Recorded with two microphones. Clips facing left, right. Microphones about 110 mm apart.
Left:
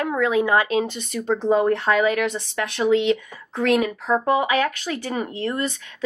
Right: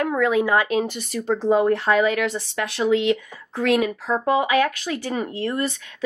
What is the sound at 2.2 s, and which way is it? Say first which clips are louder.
Speech: even; 20° left (ahead or behind).